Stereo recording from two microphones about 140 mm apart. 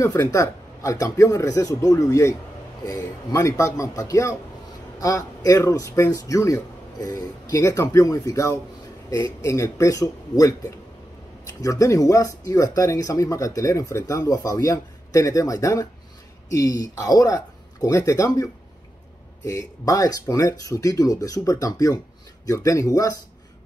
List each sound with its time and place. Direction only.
0.0 s speech: 20° left (ahead or behind)
11.6 s speech: 25° left (ahead or behind)